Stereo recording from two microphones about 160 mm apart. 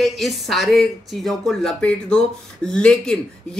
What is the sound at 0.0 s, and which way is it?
Speech, centre (ahead or behind).